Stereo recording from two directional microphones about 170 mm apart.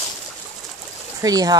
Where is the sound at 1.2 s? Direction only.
20° right (ahead or behind).